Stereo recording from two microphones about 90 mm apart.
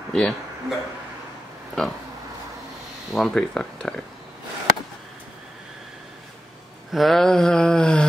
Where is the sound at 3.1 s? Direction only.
5° left (ahead or behind).